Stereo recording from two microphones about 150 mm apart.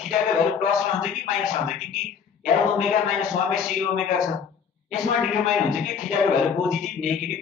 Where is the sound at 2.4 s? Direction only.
Centre (ahead or behind).